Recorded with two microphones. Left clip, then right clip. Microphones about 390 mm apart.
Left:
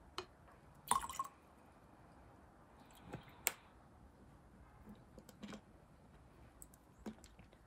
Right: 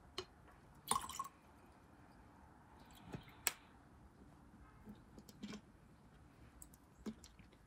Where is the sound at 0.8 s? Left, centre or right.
Centre.